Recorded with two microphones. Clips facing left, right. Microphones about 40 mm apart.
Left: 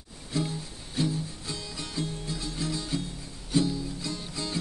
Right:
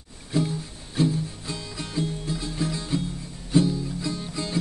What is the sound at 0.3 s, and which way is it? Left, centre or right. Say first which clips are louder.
Music: right 5 dB; centre.